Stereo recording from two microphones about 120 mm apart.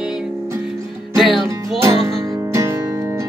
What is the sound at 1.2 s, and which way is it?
Music, centre (ahead or behind).